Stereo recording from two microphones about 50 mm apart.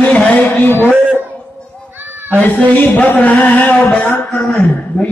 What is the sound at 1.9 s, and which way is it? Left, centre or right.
Children playing, right.